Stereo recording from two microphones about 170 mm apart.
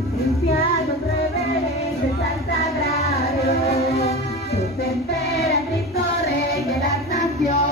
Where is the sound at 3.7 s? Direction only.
40° left (ahead or behind).